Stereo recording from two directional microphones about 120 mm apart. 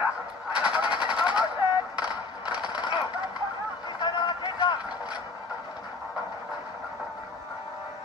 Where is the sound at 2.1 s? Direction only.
35° left (ahead or behind).